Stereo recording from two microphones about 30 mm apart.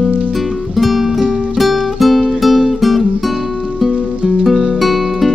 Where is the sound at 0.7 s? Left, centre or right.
Centre.